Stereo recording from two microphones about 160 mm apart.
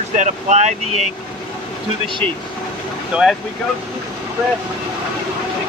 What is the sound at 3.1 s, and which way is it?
Speech, 5° right (ahead or behind).